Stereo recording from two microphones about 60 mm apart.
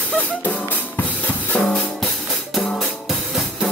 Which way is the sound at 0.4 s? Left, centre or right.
Left.